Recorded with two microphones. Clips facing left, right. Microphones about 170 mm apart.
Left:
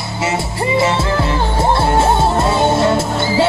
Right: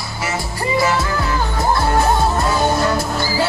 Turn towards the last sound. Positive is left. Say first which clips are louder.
# left 4 dB
turn(degrees=25)  # may be behind; listen again after turning